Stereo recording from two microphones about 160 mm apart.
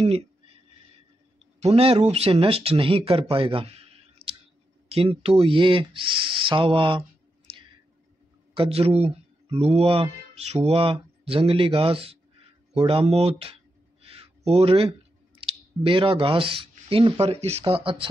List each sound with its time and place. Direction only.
1.6 s speech: 40° right (ahead or behind)
8.5 s speech: 40° right (ahead or behind)
14.0 s a sound: 40° right (ahead or behind)
15.4 s speech: 35° right (ahead or behind)